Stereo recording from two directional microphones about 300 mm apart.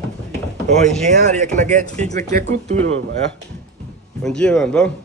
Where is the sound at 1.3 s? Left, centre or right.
Right.